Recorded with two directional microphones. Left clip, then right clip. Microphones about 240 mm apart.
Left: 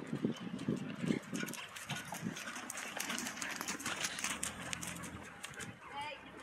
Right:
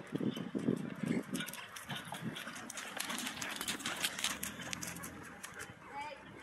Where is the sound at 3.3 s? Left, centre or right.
Centre.